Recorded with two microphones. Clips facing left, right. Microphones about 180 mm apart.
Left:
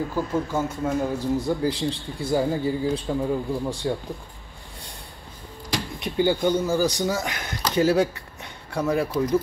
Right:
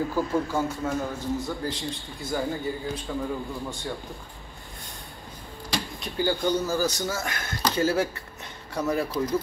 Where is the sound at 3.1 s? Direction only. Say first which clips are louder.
Left 6 dB; 20° left (ahead or behind).